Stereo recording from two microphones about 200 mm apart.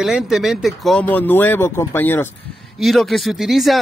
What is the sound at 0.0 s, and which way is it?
Speech, centre (ahead or behind).